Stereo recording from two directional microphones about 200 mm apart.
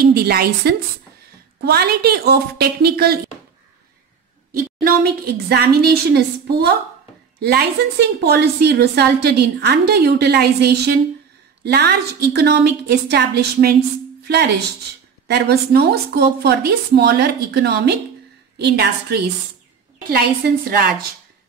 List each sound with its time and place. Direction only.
0.0 s a woman's voice: 50° right (ahead or behind)
4.6 s a woman's voice: 50° right (ahead or behind)
15.2 s a woman's voice: 55° right (ahead or behind)